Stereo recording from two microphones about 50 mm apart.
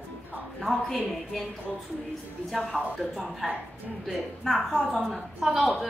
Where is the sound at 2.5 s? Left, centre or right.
Centre.